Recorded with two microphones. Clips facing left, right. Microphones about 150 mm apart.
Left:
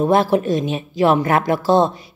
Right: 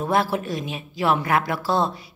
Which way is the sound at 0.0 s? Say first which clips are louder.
Left 7 dB; 20° left (ahead or behind).